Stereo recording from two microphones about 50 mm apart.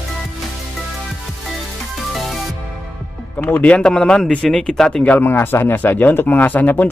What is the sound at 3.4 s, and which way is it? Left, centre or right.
Speech, left.